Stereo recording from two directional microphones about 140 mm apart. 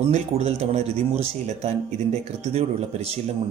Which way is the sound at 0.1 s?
50° right (ahead or behind).